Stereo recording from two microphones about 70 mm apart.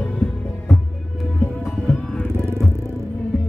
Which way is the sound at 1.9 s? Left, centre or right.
Centre.